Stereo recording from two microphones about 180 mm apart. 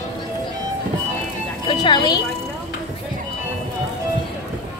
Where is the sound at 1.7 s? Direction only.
25° left (ahead or behind).